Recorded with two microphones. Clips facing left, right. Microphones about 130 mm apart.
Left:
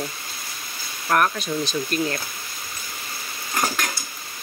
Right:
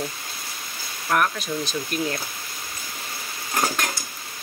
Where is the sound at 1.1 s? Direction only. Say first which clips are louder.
Left 2 dB; centre (ahead or behind).